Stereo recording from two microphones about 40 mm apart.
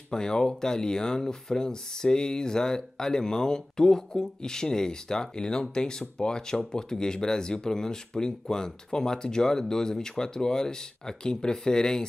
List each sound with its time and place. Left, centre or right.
0.1 s speech: centre